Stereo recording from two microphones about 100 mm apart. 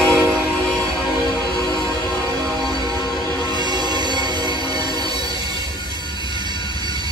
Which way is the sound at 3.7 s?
45° right (ahead or behind).